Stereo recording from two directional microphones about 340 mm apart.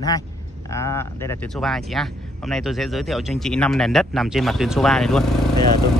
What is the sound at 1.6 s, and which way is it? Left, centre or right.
Speech, centre.